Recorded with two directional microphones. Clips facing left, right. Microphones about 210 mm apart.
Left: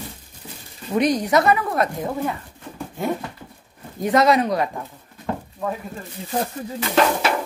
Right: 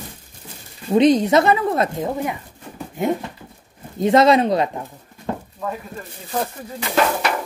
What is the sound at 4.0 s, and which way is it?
Speech, 25° right (ahead or behind).